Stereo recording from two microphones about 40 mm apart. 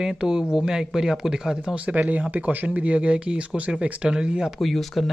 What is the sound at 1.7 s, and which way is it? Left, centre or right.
Speech, right.